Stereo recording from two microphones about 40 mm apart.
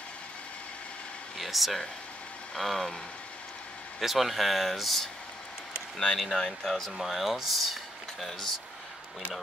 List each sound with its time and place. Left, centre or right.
1.4 s speech: centre
4.0 s speech: centre
6.1 s speech: centre
7.0 s speech: centre